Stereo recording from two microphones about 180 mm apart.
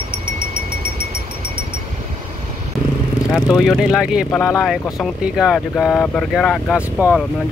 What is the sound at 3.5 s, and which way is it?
Speech, centre (ahead or behind).